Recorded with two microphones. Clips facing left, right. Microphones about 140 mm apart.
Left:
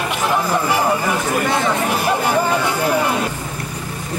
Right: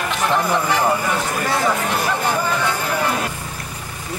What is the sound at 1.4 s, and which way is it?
Speech, centre (ahead or behind).